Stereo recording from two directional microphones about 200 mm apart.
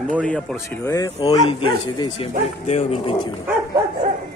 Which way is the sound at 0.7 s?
15° left (ahead or behind).